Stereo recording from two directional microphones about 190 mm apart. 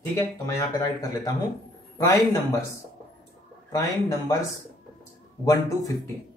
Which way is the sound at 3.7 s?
15° left (ahead or behind).